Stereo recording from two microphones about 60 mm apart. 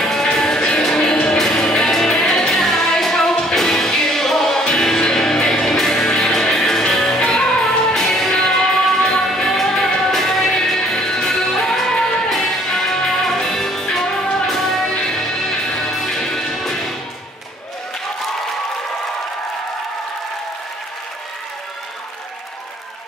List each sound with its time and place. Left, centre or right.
0.0 s music: centre